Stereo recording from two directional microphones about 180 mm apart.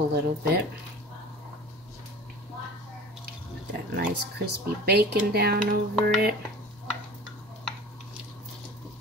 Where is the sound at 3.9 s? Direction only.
60° right (ahead or behind).